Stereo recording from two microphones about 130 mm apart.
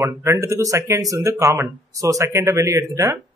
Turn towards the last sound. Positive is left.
turn(degrees=-25)  # may be behind; listen again after turning